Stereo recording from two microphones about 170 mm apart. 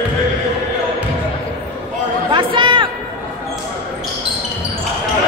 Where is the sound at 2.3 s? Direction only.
30° right (ahead or behind).